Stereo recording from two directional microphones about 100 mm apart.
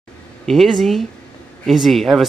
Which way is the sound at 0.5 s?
Centre (ahead or behind).